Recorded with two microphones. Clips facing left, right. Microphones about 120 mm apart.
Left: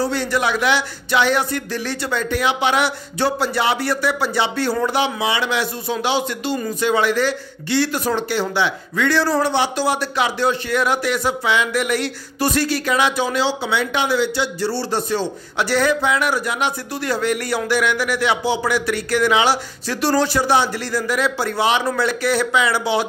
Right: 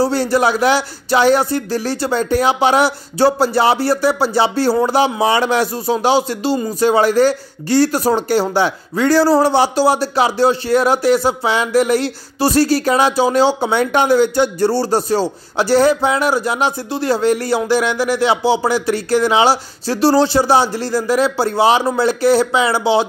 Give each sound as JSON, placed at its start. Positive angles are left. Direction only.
{"t": 0.0, "sound": "speech", "side_deg": -35}